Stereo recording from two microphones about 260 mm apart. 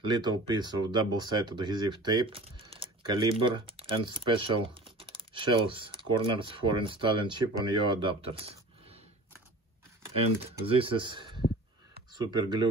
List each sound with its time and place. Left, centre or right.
0.0 s speech: centre
10.1 s speech: right